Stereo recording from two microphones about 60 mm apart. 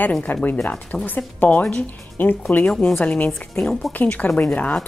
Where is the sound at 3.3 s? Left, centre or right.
Centre.